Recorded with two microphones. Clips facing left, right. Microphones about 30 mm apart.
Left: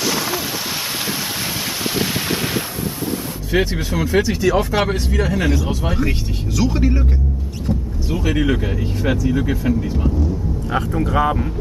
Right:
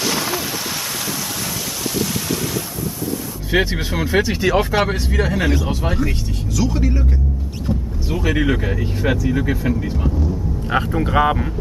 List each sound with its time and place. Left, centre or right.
0.0 s a sound: centre
2.0 s a sound: left
3.5 s speech: centre
4.7 s speech: centre
5.9 s speech: centre
7.6 s vehicle: centre
9.0 s speech: centre
10.7 s speech: centre